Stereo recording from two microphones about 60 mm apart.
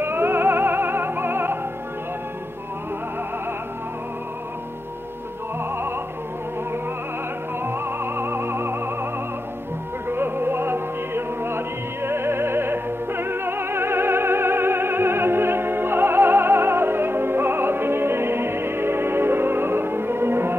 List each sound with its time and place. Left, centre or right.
0.0 s music: right
7.6 s music: right
10.0 s music: right